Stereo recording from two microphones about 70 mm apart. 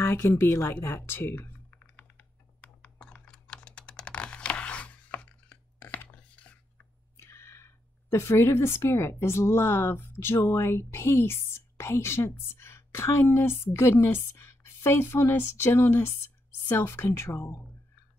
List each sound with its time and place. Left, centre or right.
0.0 s speech: left
1.4 s computer keyboard: left
7.2 s speech: left